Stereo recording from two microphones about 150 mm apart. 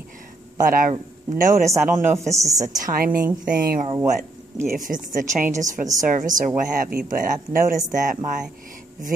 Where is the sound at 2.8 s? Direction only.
75° right (ahead or behind).